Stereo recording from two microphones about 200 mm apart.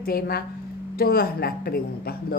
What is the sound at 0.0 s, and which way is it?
Speech, 50° left (ahead or behind).